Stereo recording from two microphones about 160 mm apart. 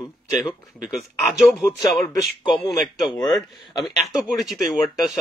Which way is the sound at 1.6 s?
20° left (ahead or behind).